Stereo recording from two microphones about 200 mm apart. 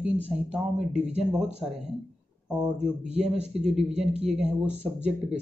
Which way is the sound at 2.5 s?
5° right (ahead or behind).